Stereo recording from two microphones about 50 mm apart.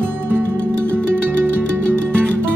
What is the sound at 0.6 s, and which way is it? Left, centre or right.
Music, left.